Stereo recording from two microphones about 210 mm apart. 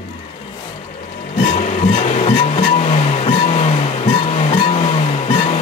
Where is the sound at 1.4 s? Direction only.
35° left (ahead or behind).